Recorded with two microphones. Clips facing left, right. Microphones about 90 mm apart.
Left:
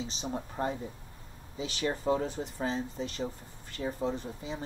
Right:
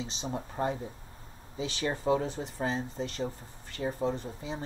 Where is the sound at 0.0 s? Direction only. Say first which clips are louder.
Even; 40° right (ahead or behind).